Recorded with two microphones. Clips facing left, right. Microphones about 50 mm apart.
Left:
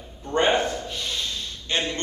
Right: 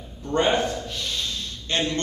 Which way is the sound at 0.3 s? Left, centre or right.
Left.